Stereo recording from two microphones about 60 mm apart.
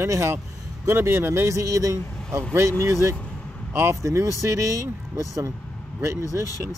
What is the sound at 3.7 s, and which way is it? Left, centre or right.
Speech, right.